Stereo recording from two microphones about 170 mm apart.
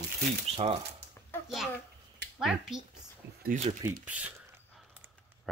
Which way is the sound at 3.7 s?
35° right (ahead or behind).